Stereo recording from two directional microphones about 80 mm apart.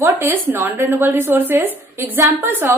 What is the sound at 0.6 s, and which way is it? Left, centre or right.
A woman's voice, right.